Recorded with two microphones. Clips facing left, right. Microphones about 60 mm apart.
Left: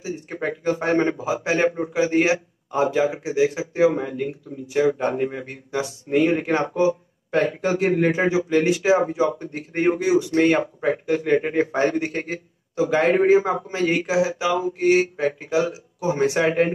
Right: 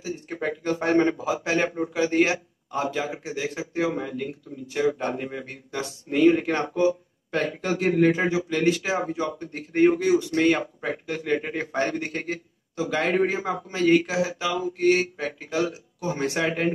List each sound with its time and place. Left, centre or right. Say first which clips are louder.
0.0 s speech: left 2 dB; centre